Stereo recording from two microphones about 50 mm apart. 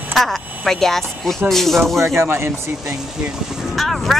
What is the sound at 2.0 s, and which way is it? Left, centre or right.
Speech, right.